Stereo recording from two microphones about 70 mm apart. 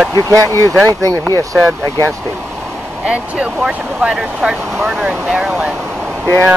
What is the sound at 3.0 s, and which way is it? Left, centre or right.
Speech, centre.